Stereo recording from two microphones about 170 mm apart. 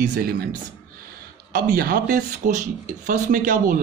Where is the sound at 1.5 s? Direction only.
60° right (ahead or behind).